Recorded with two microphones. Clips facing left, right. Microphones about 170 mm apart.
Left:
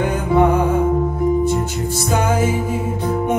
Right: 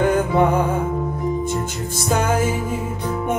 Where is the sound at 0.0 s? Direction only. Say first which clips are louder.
Left 1 dB; 50° right (ahead or behind).